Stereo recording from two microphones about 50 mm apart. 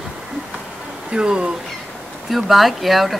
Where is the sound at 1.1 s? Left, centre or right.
Centre.